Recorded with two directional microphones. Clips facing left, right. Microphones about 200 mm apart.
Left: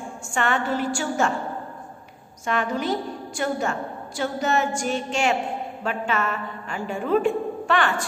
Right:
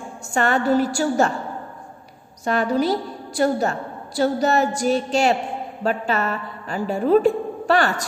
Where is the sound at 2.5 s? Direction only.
35° right (ahead or behind).